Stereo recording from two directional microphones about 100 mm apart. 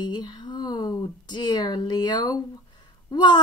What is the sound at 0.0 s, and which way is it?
A woman's voice, 45° left (ahead or behind).